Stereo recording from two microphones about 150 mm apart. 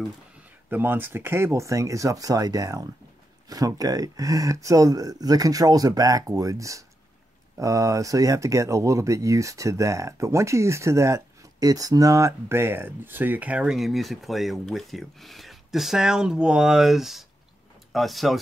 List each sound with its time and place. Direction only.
0.7 s speech: 10° right (ahead or behind)